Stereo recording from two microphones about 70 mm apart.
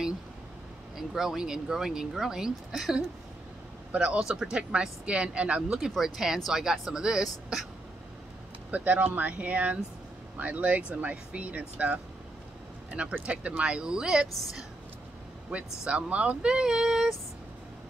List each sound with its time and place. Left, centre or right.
0.9 s speech: centre
5.9 s speech: centre
8.7 s speech: right
13.1 s speech: centre
15.8 s speech: centre